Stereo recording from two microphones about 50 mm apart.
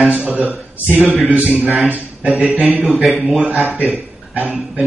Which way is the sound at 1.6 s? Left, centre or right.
Centre.